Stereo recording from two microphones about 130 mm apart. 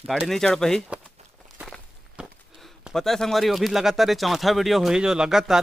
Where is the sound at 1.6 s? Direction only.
Centre (ahead or behind).